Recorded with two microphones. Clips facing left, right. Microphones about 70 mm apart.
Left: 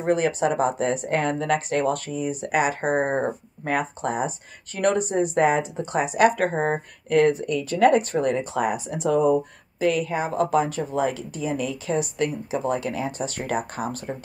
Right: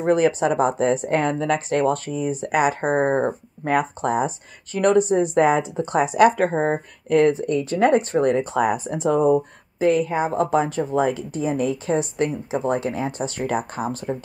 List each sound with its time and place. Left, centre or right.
0.0 s speech: right